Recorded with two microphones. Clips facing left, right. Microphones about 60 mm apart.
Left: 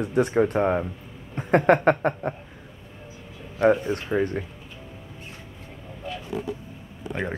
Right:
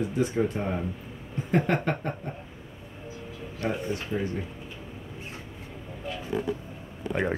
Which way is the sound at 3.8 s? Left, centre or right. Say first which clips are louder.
Left 5 dB; left.